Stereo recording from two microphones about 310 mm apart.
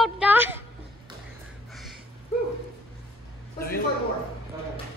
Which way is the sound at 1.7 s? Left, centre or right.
Centre.